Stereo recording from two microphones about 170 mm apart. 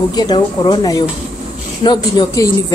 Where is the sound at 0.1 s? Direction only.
25° left (ahead or behind).